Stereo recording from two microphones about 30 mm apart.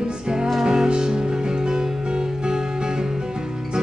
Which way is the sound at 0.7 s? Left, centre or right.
Right.